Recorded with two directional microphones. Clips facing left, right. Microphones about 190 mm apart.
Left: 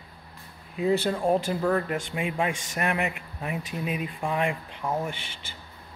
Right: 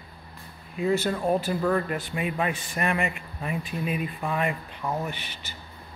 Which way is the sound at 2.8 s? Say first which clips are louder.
Right 1 dB; 15° left (ahead or behind).